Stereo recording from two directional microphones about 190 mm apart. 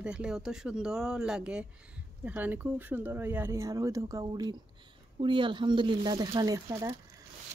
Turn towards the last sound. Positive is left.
turn(degrees=-15)  # may be behind; listen again after turning